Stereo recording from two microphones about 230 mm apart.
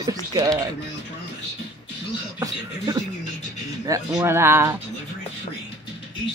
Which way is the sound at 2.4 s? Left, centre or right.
Centre.